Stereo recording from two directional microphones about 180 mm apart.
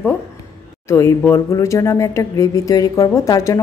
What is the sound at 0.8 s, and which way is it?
Speech, 15° left (ahead or behind).